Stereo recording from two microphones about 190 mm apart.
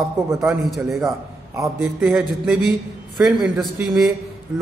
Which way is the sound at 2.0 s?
Centre (ahead or behind).